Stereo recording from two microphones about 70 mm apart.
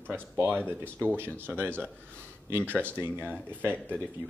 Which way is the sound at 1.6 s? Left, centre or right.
Right.